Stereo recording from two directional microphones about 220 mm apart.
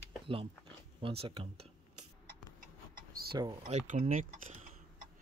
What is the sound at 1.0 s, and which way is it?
Speech, 25° right (ahead or behind).